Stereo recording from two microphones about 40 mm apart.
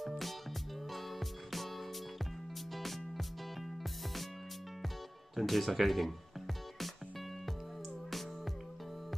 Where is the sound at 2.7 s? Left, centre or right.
Centre.